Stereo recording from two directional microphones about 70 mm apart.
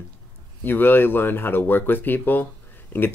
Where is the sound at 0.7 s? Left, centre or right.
Left.